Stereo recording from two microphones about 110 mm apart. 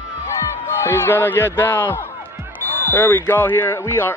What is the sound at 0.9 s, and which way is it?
Speech, 20° left (ahead or behind).